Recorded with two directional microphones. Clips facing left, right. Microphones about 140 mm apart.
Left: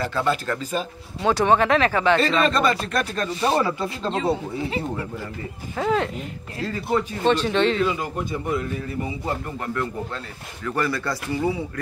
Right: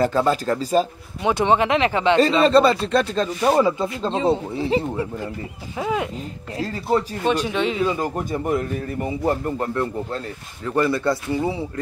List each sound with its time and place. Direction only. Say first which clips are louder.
0.0 s speech: right 5 dB; 40° right (ahead or behind)
1.2 s speech: even; 20° right (ahead or behind)
2.4 s speech: right 6 dB; 30° right (ahead or behind)
3.4 s speech: right 4 dB; 10° right (ahead or behind)
4.0 s speech: right 3 dB; 25° right (ahead or behind)
5.8 s speech: left 2 dB; 10° right (ahead or behind)
6.6 s speech: right 2 dB; 35° right (ahead or behind)
7.2 s speech: left 4 dB; 10° right (ahead or behind)
7.8 s a man's voice: right 2 dB; 40° right (ahead or behind)
9.6 s speech: right 3 dB; 30° right (ahead or behind)